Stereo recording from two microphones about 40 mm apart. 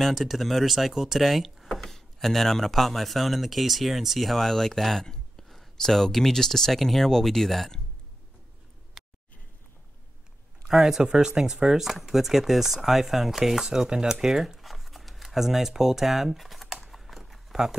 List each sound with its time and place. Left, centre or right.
0.1 s speech: centre
9.0 s a sound: centre
10.7 s speech: centre
11.0 s speech: centre
16.8 s typing: centre